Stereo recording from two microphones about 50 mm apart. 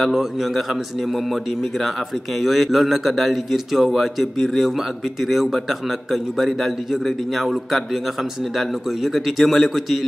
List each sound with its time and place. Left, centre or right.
0.0 s a man's voice: centre